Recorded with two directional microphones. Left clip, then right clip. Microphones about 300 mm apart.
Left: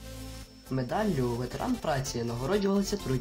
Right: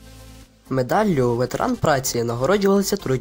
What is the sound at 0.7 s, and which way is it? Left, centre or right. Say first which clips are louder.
Speech: right 11 dB; right.